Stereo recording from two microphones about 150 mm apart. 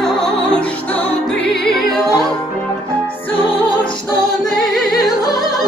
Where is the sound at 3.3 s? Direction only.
35° left (ahead or behind).